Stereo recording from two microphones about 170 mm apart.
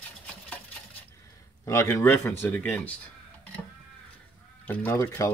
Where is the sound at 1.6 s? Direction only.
15° left (ahead or behind).